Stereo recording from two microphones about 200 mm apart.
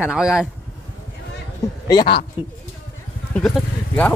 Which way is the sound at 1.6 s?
20° left (ahead or behind).